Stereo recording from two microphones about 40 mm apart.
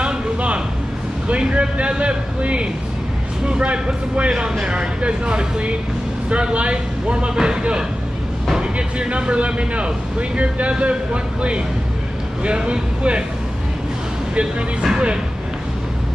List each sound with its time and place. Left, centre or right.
0.0 s a sound: right
1.3 s speech: right
12.4 s speech: right
14.3 s speech: right